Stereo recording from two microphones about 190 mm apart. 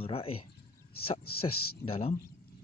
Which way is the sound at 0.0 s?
30° left (ahead or behind).